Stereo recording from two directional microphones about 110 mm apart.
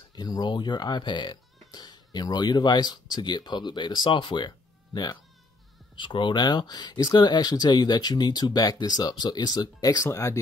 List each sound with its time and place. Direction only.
0.1 s speech: 40° left (ahead or behind)